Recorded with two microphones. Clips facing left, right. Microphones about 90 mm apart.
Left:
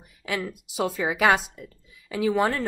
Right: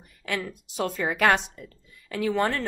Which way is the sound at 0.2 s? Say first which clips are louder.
Left 1 dB; 10° left (ahead or behind).